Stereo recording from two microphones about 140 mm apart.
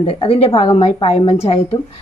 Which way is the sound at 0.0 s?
45° left (ahead or behind).